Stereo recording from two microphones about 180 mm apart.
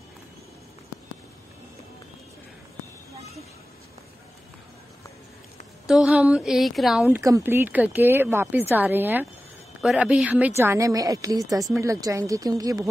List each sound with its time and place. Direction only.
5.9 s speech: 5° right (ahead or behind)
7.2 s speech: 15° right (ahead or behind)